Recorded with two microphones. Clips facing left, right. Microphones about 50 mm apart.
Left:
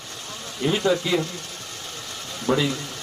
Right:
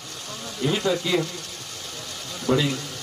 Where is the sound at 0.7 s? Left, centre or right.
Centre.